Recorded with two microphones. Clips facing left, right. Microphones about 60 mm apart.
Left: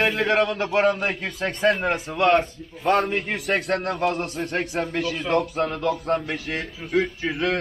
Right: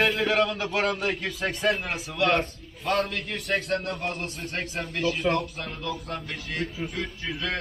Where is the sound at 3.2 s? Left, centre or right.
Left.